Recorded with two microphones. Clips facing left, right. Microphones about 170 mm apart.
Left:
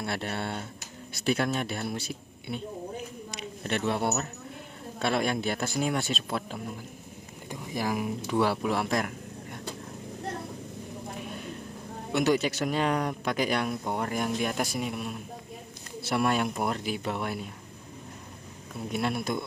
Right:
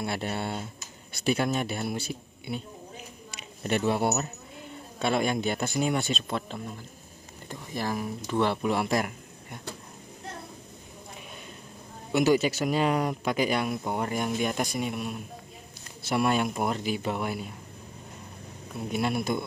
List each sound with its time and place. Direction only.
0.0 s speech: 5° right (ahead or behind)
12.1 s speech: 5° right (ahead or behind)
18.9 s speech: centre (ahead or behind)